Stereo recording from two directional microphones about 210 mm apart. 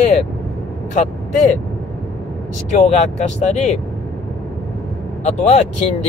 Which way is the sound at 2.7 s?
30° left (ahead or behind).